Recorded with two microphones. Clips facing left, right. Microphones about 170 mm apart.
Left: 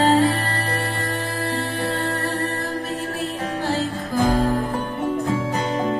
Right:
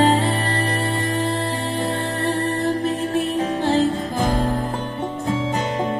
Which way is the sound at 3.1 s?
20° right (ahead or behind).